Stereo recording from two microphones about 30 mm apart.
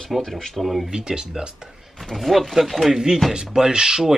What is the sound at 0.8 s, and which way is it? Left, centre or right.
Speech, right.